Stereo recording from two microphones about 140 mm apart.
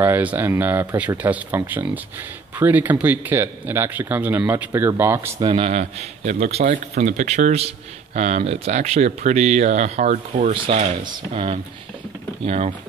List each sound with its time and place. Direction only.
0.0 s speech: 10° right (ahead or behind)
5.4 s speech: 35° right (ahead or behind)
5.7 s a man's voice: 55° right (ahead or behind)
10.5 s a man's voice: 40° right (ahead or behind)